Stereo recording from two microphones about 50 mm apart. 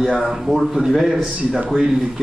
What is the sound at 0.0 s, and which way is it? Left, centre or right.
A man's voice, centre.